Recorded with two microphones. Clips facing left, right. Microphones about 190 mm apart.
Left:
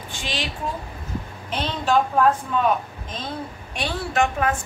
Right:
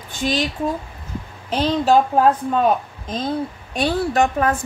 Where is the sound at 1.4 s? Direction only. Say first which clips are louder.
Right 7 dB; 35° right (ahead or behind).